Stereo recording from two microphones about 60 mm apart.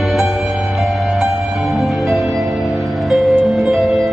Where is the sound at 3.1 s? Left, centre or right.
Centre.